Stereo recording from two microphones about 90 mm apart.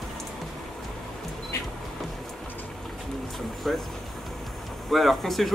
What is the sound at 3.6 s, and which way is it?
Vehicle, 5° left (ahead or behind).